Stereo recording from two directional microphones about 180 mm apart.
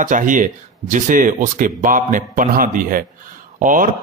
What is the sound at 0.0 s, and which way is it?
Speech, 45° right (ahead or behind).